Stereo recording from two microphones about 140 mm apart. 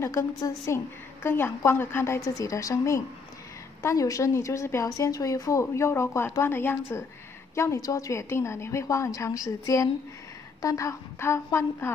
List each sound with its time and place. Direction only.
0.0 s a woman's voice: 20° left (ahead or behind)